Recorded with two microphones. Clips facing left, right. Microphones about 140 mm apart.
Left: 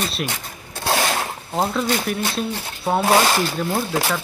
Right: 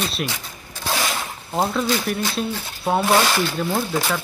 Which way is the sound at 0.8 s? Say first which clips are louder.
Left 4 dB; 55° left (ahead or behind).